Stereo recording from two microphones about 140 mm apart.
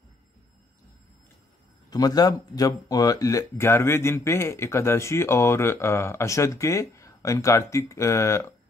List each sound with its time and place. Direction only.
1.9 s speech: 30° left (ahead or behind)